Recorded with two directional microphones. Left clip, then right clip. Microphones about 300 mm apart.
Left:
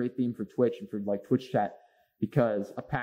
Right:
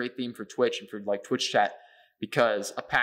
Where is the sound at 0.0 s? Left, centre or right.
Centre.